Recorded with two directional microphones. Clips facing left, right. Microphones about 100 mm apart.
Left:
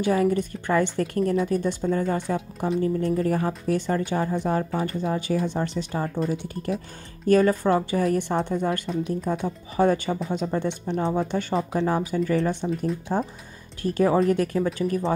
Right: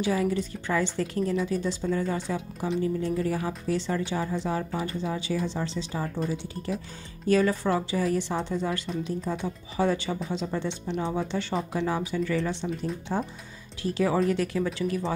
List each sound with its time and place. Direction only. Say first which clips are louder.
0.0 s a woman's voice: left 4 dB; 50° left (ahead or behind)
2.8 s a woman's voice: left 4 dB; 45° left (ahead or behind)
11.0 s a woman's voice: left 4 dB; 35° left (ahead or behind)